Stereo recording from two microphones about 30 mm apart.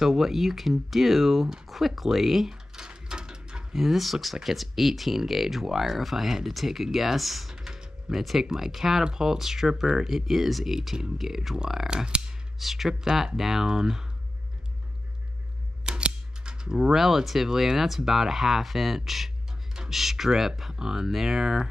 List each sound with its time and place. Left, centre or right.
0.0 s speech: centre
2.9 s mechanisms: right
3.7 s speech: centre
7.5 s typing: right
8.1 s speech: centre
12.5 s speech: centre
15.8 s scissors: right
16.9 s speech: centre